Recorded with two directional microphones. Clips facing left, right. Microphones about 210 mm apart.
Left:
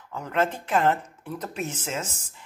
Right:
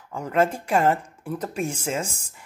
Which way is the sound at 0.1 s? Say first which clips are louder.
Right 4 dB; 10° right (ahead or behind).